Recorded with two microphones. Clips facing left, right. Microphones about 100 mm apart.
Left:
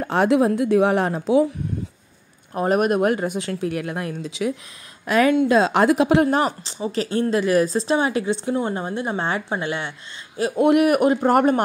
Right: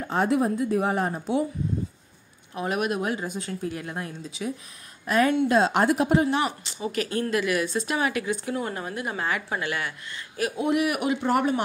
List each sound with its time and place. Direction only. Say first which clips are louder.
0.0 s speech: left 6 dB; 80° left
2.5 s speech: left 8 dB; 45° left (ahead or behind); by 6.2 s 90° left
6.2 s a woman's voice: left 5 dB; 40° left (ahead or behind); by 10.5 s 25° left (ahead or behind)
10.6 s a man's voice: left 9 dB; 55° left (ahead or behind)